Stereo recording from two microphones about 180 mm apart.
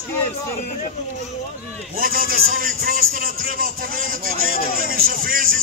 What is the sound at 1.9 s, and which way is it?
A man's voice, 55° right (ahead or behind).